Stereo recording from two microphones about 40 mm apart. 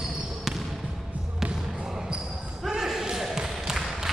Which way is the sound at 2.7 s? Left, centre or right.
Centre.